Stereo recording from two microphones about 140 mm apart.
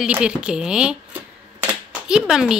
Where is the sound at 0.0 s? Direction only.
5° right (ahead or behind).